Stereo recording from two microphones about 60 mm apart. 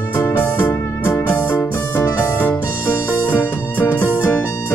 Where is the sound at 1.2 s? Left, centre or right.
Left.